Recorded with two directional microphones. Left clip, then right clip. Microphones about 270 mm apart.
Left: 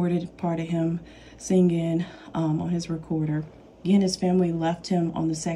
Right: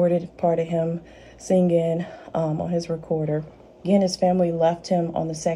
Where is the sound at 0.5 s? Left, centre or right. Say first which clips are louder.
Right 7 dB; centre.